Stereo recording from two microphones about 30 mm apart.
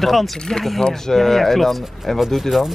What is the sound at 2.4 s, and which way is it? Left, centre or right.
Speech, centre.